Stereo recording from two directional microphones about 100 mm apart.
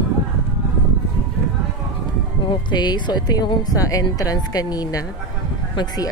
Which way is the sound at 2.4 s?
50° left (ahead or behind).